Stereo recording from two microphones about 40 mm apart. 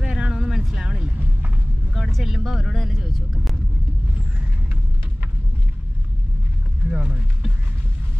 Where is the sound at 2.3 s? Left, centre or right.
Centre.